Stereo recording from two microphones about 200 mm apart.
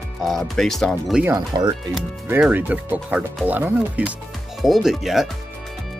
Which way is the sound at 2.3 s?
10° right (ahead or behind).